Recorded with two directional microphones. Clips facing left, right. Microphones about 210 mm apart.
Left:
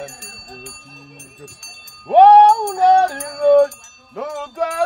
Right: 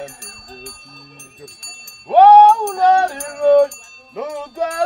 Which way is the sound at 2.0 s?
15° left (ahead or behind).